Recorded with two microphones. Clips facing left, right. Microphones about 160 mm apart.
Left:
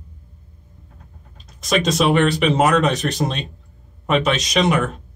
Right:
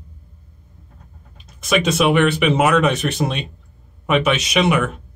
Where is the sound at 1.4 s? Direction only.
5° right (ahead or behind).